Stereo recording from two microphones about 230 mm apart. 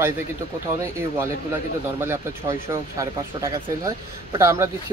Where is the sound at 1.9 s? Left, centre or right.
Centre.